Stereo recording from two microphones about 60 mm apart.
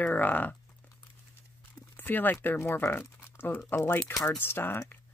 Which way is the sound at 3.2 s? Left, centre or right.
Left.